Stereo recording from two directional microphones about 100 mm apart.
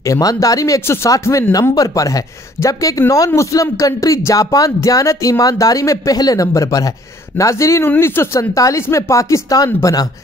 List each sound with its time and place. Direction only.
0.0 s speech: 35° left (ahead or behind)